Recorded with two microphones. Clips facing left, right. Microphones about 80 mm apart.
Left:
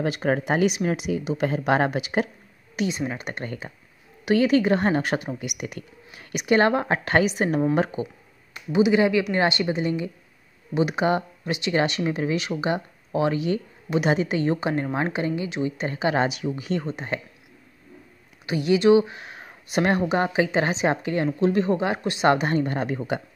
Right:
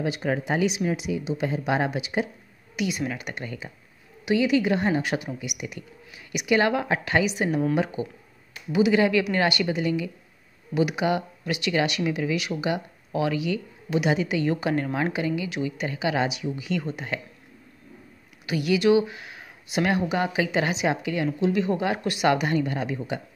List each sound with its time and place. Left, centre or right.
0.0 s speech: left
2.7 s speech: left
8.7 s speech: left
18.5 s speech: left
21.7 s speech: left